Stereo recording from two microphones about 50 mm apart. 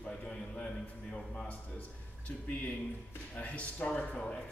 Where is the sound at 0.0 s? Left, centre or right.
Left.